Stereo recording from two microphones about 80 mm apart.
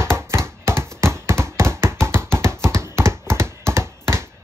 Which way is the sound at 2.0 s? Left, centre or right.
Right.